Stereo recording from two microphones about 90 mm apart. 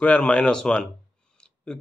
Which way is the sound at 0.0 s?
15° left (ahead or behind).